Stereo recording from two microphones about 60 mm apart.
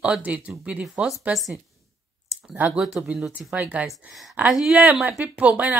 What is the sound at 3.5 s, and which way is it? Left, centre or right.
Speech, right.